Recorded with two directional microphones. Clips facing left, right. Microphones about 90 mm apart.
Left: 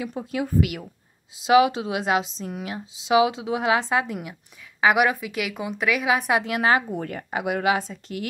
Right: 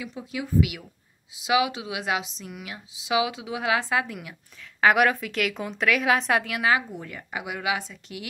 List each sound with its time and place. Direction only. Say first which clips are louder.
0.0 s a woman's voice: left 5 dB; 45° left (ahead or behind); by 4.4 s 25° left (ahead or behind)
4.7 s a woman's voice: even; 10° left (ahead or behind)
6.4 s a woman's voice: left 3 dB; 35° left (ahead or behind)